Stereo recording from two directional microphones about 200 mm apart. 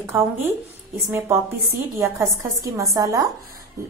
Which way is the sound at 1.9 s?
15° right (ahead or behind).